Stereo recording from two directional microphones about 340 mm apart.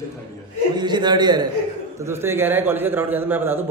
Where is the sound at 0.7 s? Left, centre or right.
Centre.